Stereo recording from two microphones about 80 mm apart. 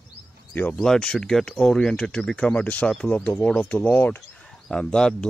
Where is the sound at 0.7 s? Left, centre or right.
Centre.